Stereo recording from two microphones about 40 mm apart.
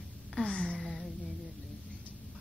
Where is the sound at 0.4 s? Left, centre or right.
Left.